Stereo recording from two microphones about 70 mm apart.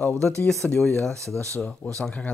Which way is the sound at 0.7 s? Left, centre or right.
Centre.